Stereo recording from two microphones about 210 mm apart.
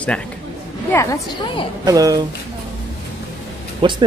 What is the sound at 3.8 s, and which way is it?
Speech, 25° right (ahead or behind).